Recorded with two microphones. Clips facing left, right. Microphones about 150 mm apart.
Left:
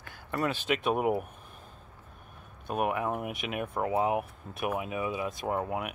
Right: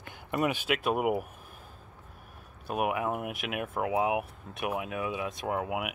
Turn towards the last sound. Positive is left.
turn(degrees=-5)  # may be behind; listen again after turning